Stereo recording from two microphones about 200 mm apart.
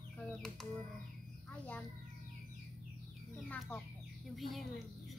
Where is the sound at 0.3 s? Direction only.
5° left (ahead or behind).